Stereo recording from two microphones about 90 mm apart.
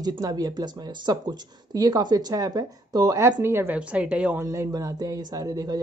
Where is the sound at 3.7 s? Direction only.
15° right (ahead or behind).